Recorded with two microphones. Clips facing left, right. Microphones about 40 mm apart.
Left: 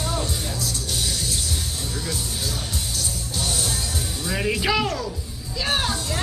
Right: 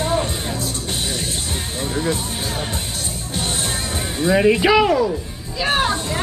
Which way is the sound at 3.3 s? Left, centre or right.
Right.